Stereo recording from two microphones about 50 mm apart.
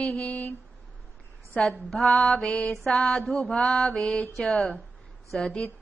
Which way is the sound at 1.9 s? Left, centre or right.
Centre.